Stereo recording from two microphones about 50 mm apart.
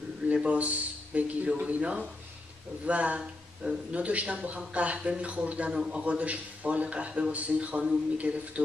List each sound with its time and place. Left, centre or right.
0.3 s a man's voice: right